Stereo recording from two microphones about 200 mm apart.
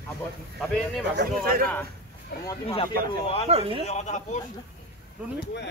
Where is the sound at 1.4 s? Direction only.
45° right (ahead or behind).